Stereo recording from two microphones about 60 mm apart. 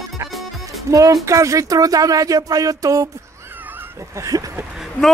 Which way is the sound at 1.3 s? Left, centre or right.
Right.